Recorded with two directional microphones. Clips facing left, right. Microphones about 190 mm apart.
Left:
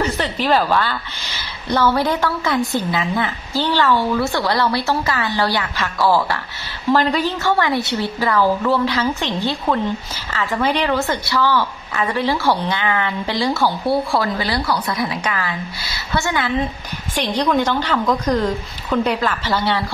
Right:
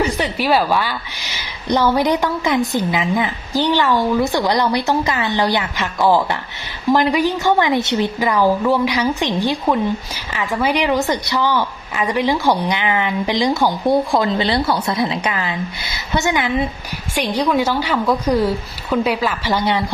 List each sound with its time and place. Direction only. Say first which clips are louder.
0.0 s a woman's voice: right 2 dB; 10° right (ahead or behind)